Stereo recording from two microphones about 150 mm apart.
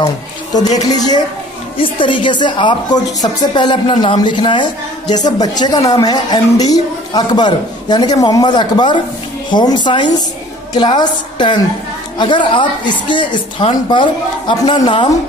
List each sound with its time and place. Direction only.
0.0 s a woman's voice: 25° left (ahead or behind)